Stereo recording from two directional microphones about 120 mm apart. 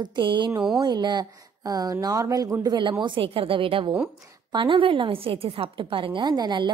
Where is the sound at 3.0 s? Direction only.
45° right (ahead or behind).